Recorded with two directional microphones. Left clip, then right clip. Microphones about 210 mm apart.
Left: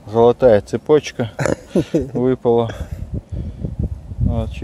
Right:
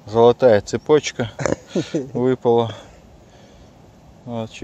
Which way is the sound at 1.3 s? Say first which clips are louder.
Left 4 dB; 50° left (ahead or behind).